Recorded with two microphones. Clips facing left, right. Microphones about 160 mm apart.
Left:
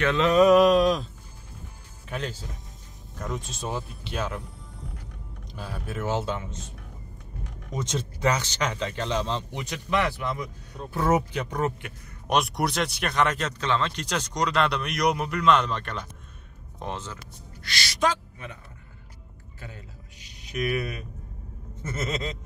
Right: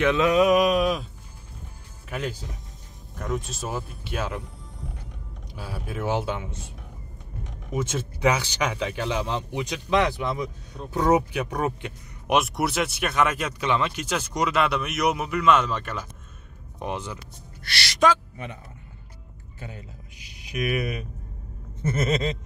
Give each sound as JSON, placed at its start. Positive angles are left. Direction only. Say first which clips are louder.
{"t": 0.0, "sound": "speech", "louder": "even", "side_deg": -10}
{"t": 2.0, "sound": "speech", "louder": "right 2 dB", "side_deg": -5}
{"t": 5.6, "sound": "speech", "louder": "right 1 dB", "side_deg": -10}
{"t": 7.7, "sound": "speech", "louder": "right 3 dB", "side_deg": -5}
{"t": 12.4, "sound": "speech", "louder": "right 1 dB", "side_deg": 0}
{"t": 17.6, "sound": "a sound", "louder": "right 4 dB", "side_deg": -65}
{"t": 19.6, "sound": "speech", "louder": "right 3 dB", "side_deg": -15}
{"t": 21.8, "sound": "a sound", "louder": "right 6 dB", "side_deg": -20}